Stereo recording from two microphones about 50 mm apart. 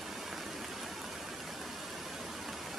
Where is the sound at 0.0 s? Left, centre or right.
Centre.